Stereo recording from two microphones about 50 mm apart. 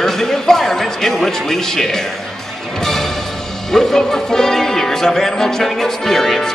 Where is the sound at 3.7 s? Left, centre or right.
Centre.